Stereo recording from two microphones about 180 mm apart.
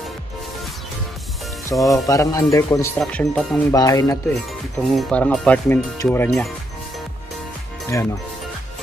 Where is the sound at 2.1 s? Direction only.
20° left (ahead or behind).